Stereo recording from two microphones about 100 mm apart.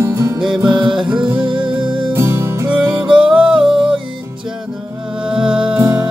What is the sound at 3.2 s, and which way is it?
Music, 10° right (ahead or behind).